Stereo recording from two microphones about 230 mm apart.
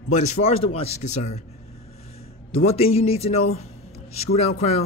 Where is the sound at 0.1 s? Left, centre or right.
Left.